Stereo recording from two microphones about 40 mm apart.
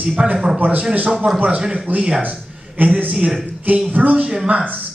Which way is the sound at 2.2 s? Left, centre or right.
Right.